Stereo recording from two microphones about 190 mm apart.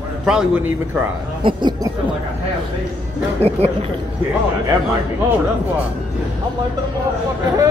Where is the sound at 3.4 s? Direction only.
35° right (ahead or behind).